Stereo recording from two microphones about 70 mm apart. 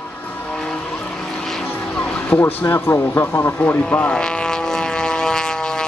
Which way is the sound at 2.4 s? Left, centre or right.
Left.